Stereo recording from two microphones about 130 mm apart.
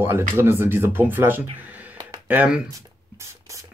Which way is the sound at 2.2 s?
10° right (ahead or behind).